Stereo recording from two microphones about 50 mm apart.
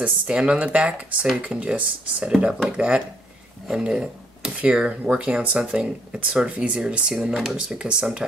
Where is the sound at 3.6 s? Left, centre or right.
Centre.